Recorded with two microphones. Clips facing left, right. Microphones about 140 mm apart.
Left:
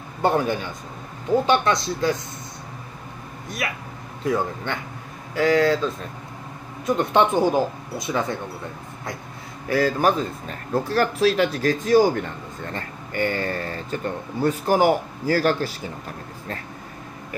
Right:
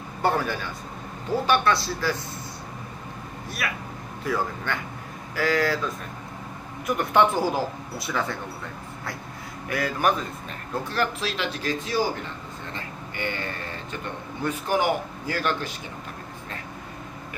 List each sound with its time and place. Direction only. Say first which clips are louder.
0.2 s speech: left 4 dB; 20° left (ahead or behind)
3.6 s speech: left 2 dB; 25° left (ahead or behind)
6.9 s speech: left 2 dB; 25° left (ahead or behind)
9.7 s a man's voice: left 5 dB; 30° left (ahead or behind)